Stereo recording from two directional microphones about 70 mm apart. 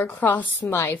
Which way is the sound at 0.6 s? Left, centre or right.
Left.